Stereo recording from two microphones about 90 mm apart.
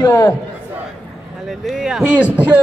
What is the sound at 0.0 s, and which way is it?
Speech, 40° left (ahead or behind).